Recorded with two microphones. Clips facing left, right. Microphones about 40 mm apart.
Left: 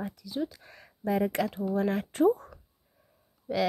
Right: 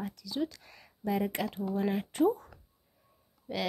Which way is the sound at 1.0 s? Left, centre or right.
Left.